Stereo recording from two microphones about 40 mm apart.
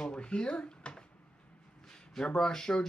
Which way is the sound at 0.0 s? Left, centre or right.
Left.